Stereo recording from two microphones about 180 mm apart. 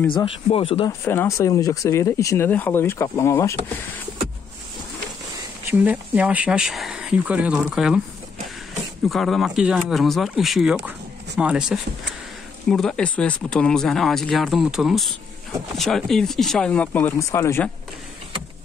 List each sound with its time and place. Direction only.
0.1 s speech: 30° left (ahead or behind)
1.0 s speech: 15° left (ahead or behind)
5.7 s speech: 10° right (ahead or behind)
9.1 s speech: centre (ahead or behind)